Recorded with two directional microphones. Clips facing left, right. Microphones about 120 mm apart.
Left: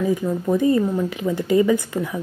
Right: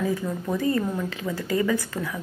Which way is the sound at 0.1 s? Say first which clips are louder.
Left 7 dB; 20° left (ahead or behind).